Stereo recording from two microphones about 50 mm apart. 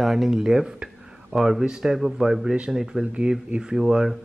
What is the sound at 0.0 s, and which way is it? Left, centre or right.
Speech, centre.